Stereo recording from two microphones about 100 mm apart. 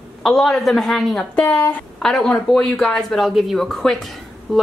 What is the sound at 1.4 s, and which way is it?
Speech, 20° left (ahead or behind).